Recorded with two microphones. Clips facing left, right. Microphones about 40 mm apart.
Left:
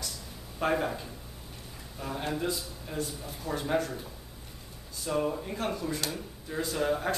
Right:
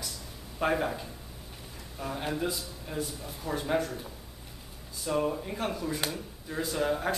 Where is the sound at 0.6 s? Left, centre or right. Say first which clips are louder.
Even; centre.